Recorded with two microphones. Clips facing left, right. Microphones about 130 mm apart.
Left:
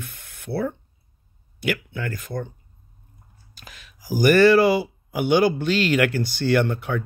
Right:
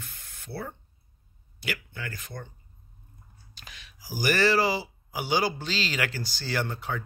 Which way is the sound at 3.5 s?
45° left (ahead or behind).